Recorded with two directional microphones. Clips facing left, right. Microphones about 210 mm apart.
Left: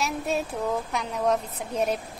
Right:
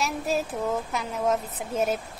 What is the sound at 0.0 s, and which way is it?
A woman's voice, centre (ahead or behind).